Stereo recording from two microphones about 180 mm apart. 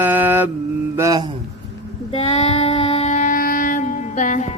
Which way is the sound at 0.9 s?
20° right (ahead or behind).